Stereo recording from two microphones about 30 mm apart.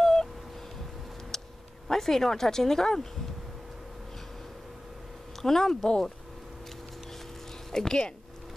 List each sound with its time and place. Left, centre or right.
0.0 s telephone dialing: centre
1.3 s a sound: centre
1.9 s speech: centre
5.4 s speech: centre
7.7 s speech: left